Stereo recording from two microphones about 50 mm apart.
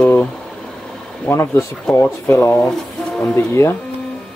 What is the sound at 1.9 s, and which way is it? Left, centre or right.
Speech, left.